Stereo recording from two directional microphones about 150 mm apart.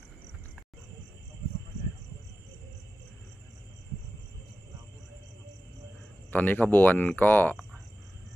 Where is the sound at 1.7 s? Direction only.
55° right (ahead or behind).